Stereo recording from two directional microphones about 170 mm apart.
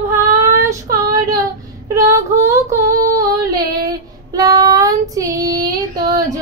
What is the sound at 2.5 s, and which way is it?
Female singing, 15° right (ahead or behind).